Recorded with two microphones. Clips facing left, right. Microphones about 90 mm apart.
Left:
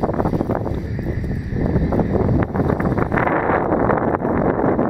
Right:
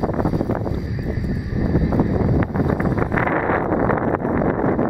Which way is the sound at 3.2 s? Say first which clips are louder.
Left 3 dB; 50° left (ahead or behind).